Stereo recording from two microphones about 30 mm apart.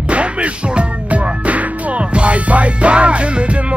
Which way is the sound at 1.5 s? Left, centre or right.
Right.